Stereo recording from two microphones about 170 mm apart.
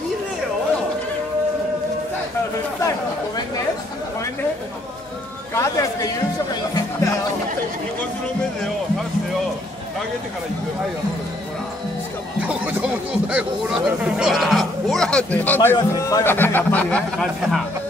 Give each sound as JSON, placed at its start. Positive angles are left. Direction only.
{"t": 5.5, "sound": "speech", "side_deg": 20}
{"t": 6.7, "sound": "music", "side_deg": 20}
{"t": 12.4, "sound": "speech", "side_deg": -10}